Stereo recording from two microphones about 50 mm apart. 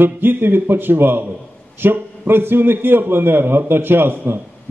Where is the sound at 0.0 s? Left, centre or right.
Right.